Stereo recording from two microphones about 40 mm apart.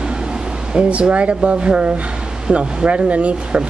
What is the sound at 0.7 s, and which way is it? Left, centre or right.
Speech, right.